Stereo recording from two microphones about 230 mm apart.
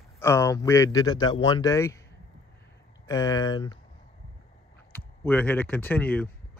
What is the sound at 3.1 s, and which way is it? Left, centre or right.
Speech, centre.